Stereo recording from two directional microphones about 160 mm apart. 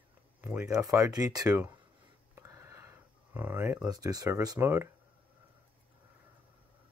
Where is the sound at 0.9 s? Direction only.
20° right (ahead or behind).